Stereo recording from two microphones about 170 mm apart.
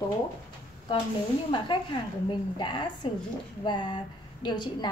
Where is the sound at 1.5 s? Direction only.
30° left (ahead or behind).